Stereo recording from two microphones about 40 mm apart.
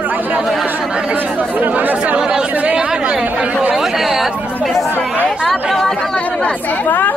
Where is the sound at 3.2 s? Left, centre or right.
Right.